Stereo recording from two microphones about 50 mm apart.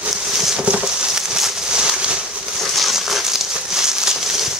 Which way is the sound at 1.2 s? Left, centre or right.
Centre.